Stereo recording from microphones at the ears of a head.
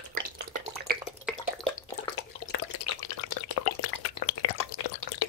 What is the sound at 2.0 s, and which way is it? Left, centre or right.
Drip, left.